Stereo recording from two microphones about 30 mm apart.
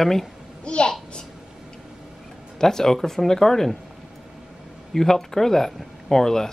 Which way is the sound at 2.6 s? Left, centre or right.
Centre.